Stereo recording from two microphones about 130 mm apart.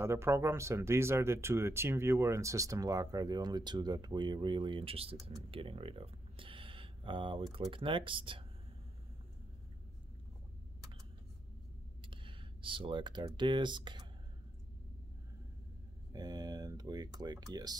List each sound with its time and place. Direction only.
0.0 s speech: 20° right (ahead or behind); by 5.1 s 45° right (ahead or behind)
5.5 s a sound: 45° right (ahead or behind)
7.5 s speech: 40° right (ahead or behind)
12.0 s speech: 40° right (ahead or behind)
16.1 s speech: 30° right (ahead or behind)